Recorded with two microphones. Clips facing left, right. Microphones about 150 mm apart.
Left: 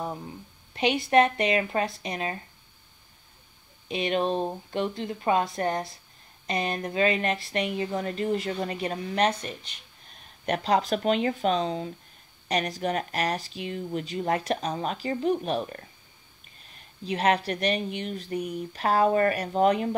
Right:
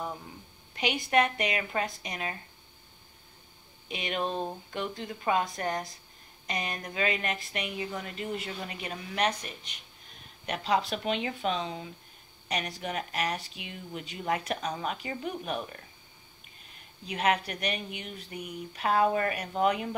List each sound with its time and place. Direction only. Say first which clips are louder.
0.7 s speech: left 5 dB; 30° left (ahead or behind)
3.9 s speech: left 6 dB; 30° left (ahead or behind)
10.4 s speech: left 4 dB; 45° left (ahead or behind)
17.0 s speech: left 4 dB; 35° left (ahead or behind)